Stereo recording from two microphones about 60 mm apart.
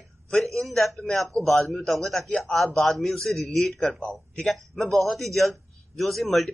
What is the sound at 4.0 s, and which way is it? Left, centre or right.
Speech, centre.